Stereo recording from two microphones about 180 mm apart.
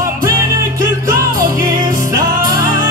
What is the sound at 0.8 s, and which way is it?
Music, 15° right (ahead or behind).